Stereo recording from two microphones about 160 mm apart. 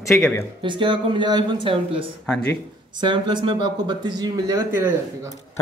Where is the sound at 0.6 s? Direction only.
30° right (ahead or behind).